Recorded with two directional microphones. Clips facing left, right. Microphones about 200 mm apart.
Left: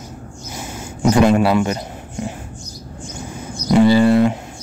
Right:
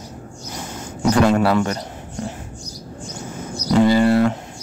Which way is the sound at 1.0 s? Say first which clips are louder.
Left 2 dB; 15° left (ahead or behind).